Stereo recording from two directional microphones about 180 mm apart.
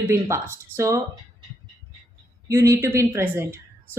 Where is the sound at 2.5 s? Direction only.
15° right (ahead or behind).